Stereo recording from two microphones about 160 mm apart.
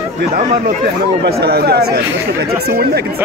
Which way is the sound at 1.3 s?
80° right.